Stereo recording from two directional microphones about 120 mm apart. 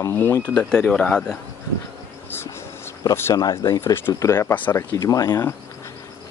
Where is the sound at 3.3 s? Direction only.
30° left (ahead or behind).